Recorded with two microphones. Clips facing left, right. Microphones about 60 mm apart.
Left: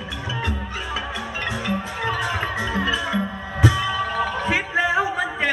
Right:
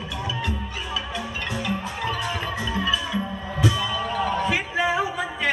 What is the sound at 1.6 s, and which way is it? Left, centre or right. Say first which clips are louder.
Music: left 1 dB; left.